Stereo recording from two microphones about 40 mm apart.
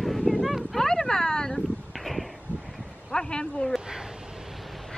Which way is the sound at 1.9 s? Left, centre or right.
Centre.